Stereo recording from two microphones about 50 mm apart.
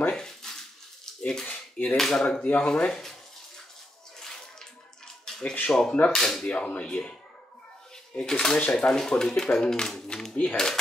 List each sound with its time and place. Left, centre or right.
0.1 s a sound: centre
1.2 s speech: centre
1.5 s a sound: left
2.0 s speech: centre
5.7 s speech: centre
6.4 s speech: left; by 10.8 s centre